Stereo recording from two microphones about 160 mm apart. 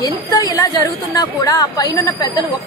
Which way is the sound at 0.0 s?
20° left (ahead or behind).